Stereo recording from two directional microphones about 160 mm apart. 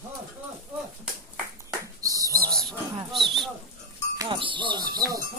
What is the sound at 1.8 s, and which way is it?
Bird, 20° right (ahead or behind).